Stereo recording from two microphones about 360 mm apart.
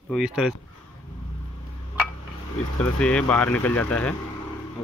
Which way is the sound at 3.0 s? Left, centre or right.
Centre.